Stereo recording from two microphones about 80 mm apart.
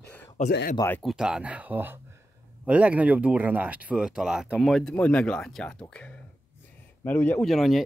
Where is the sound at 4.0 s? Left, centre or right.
Centre.